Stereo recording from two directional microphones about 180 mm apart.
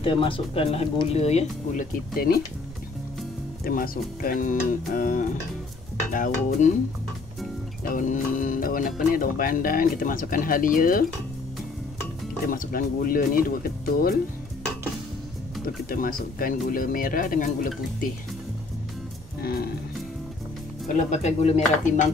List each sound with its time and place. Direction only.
0.0 s speech: 30° left (ahead or behind)
2.1 s speech: 60° left (ahead or behind)
3.6 s speech: 55° left (ahead or behind)
7.8 s speech: 50° left (ahead or behind)
12.4 s speech: 50° left (ahead or behind)
15.9 s speech: 50° left (ahead or behind)
19.4 s music: 60° left (ahead or behind)
20.8 s speech: 45° left (ahead or behind)